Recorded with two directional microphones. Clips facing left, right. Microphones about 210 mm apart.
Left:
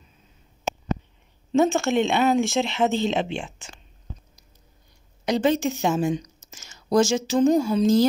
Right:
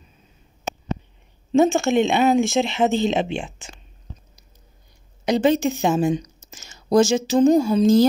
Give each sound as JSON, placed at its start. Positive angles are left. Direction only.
{"t": 1.5, "sound": "speech", "side_deg": -20}
{"t": 5.2, "sound": "a woman's voice", "side_deg": -20}